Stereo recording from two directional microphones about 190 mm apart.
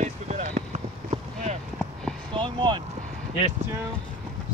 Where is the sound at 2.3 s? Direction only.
25° right (ahead or behind).